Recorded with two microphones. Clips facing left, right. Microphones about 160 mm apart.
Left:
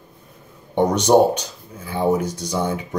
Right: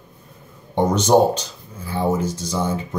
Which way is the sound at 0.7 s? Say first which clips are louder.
Left 1 dB; 15° left (ahead or behind).